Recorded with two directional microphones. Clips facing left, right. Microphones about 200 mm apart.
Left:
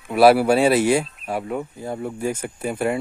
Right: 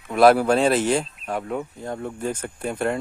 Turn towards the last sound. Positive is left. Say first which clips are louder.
# left 2 dB
turn(degrees=5)  # may be behind; listen again after turning